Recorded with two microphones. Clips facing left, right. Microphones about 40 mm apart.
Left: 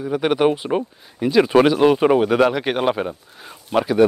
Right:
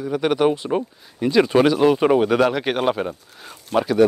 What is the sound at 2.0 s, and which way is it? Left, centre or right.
Speech, centre.